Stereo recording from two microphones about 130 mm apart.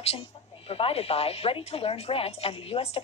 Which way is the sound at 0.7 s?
45° left (ahead or behind).